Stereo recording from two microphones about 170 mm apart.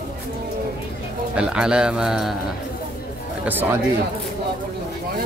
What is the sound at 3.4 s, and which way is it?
Speech, 10° right (ahead or behind).